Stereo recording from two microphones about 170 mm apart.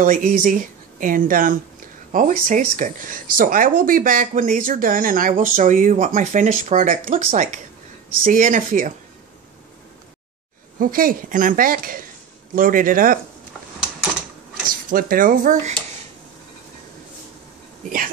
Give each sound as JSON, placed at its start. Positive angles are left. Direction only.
{"t": 0.0, "sound": "speech", "side_deg": -50}
{"t": 10.8, "sound": "speech", "side_deg": -55}
{"t": 14.9, "sound": "speech", "side_deg": -55}
{"t": 17.8, "sound": "speech", "side_deg": -55}